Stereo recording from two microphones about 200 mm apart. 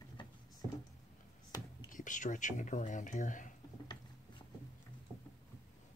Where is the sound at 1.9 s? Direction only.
40° left (ahead or behind).